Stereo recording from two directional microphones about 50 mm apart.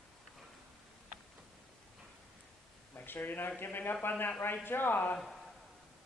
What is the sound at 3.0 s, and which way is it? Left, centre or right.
Speech, left.